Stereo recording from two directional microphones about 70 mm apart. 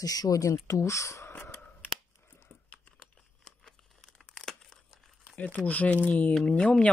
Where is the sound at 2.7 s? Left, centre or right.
Centre.